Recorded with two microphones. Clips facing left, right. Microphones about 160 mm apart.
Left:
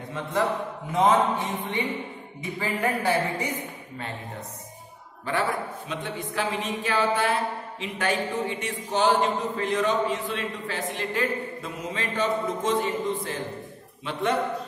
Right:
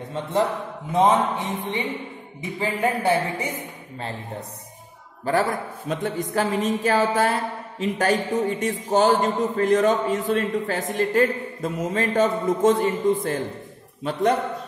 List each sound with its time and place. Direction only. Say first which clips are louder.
0.9 s speech: right 2 dB; 20° right (ahead or behind)
5.2 s a man's voice: right 4 dB; 40° right (ahead or behind)